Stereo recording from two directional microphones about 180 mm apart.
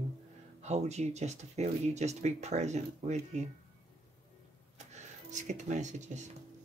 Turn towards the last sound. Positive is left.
turn(degrees=-40)  # may be behind; listen again after turning